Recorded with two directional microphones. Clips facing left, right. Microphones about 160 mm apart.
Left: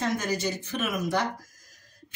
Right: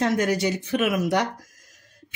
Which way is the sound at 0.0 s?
70° right (ahead or behind).